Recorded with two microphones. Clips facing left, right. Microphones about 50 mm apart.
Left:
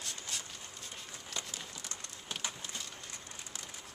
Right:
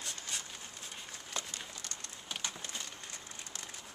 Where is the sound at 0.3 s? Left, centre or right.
Centre.